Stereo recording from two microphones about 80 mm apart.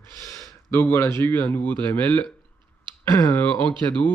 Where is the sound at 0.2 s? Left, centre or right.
Left.